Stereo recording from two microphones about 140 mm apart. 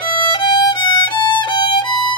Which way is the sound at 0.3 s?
30° left (ahead or behind).